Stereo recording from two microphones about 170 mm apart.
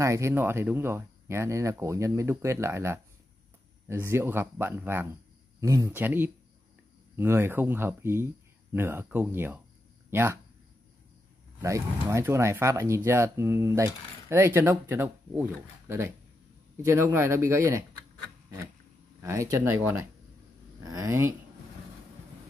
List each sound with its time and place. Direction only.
0.0 s speech: 15° right (ahead or behind)
11.6 s speech: 15° right (ahead or behind)
19.2 s speech: 20° right (ahead or behind)